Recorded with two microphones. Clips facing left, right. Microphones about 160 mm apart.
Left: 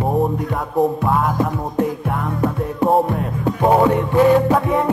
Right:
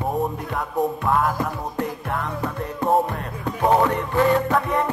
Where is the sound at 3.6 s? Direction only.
15° left (ahead or behind).